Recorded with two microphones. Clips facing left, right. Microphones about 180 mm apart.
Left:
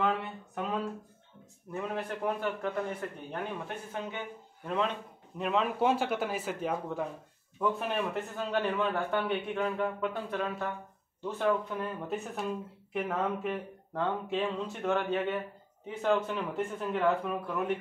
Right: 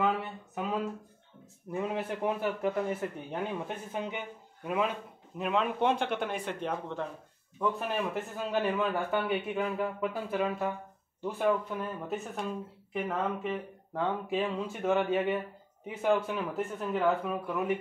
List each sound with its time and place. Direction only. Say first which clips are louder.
0.0 s a sound: right 1 dB; centre (ahead or behind)
2.0 s speech: right 1 dB; 5° right (ahead or behind)
3.5 s speech: right 2 dB; 15° right (ahead or behind)